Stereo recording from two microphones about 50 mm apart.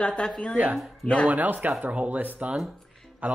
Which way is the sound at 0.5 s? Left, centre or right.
Right.